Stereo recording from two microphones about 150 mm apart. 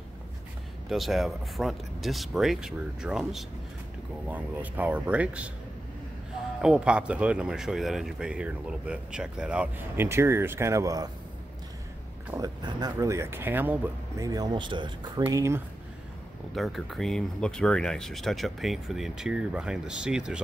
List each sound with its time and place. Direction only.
0.8 s speech: centre (ahead or behind)
6.6 s speech: 5° right (ahead or behind); by 11.1 s 20° right (ahead or behind)
12.4 s speech: 20° right (ahead or behind)
15.2 s speech: 15° right (ahead or behind)
16.5 s speech: centre (ahead or behind)